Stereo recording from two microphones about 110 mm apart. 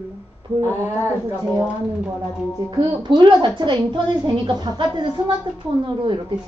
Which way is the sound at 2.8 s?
45° right (ahead or behind).